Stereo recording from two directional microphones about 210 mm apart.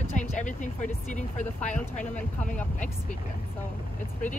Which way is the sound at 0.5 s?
35° left (ahead or behind).